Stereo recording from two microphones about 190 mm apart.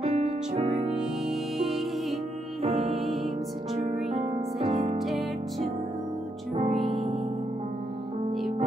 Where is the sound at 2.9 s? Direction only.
Centre (ahead or behind).